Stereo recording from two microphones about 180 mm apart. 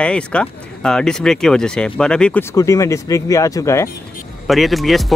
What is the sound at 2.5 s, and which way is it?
Speech, 15° left (ahead or behind).